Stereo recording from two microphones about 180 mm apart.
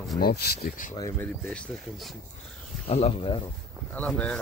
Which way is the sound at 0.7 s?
45° left (ahead or behind).